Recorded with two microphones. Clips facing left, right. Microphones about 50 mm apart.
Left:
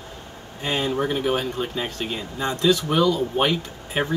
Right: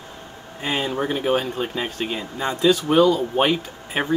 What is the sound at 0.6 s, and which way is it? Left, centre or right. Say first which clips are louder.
Speech: even; centre.